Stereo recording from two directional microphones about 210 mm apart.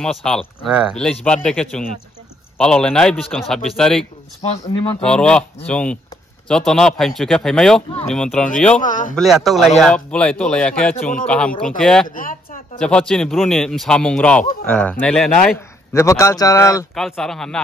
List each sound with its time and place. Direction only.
0.0 s speech: 5° left (ahead or behind)
8.8 s a man's voice: 40° left (ahead or behind)
9.1 s a man's voice: centre (ahead or behind); by 16.8 s 15° left (ahead or behind)
16.9 s speech: centre (ahead or behind)